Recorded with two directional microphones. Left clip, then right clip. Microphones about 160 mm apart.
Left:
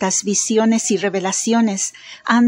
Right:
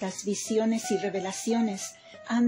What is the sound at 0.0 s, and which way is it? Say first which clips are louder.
A man's voice: left 13 dB; 45° left (ahead or behind).